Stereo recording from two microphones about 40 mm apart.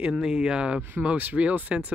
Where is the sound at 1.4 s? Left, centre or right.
Right.